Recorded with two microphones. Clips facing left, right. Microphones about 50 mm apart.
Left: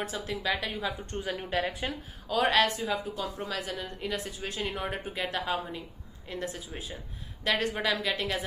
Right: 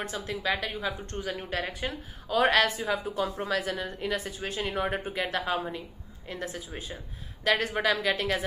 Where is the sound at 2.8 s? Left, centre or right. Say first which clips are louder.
Right 3 dB; right.